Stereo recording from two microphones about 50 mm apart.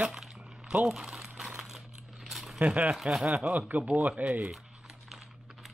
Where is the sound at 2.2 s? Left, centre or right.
Centre.